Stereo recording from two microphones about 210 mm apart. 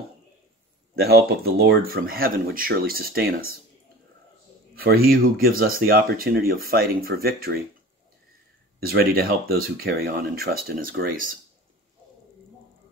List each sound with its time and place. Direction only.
0.9 s speech: 50° right (ahead or behind)
4.7 s speech: 45° right (ahead or behind)
8.7 s speech: 45° right (ahead or behind)